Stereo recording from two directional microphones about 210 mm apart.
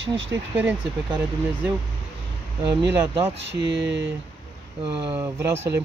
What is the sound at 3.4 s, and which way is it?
Speech, 55° right (ahead or behind).